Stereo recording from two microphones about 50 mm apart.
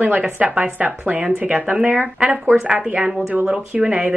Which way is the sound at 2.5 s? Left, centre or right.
Centre.